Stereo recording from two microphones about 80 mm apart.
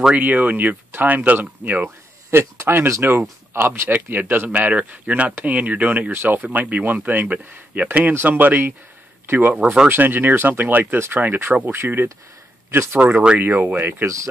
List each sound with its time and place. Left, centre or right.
0.1 s speech: right
9.6 s speech: centre
9.8 s speech: right
13.1 s speech: centre
13.4 s speech: right
14.0 s speech: right